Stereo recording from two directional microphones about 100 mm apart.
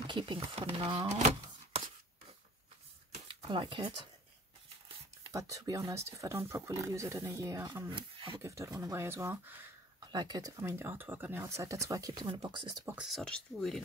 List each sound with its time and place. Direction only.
0.0 s speech: 55° right (ahead or behind); by 0.8 s 70° right (ahead or behind)
0.8 s speech: 50° right (ahead or behind)
3.3 s speech: 55° right (ahead or behind)
5.3 s speech: 35° right (ahead or behind)
7.9 s speech: 60° right (ahead or behind)
8.4 s speech: 30° right (ahead or behind)
10.1 s speech: 40° right (ahead or behind)
10.6 s speech: 25° right (ahead or behind)
12.1 s speech: 50° right (ahead or behind)
13.1 s speech: 5° left (ahead or behind)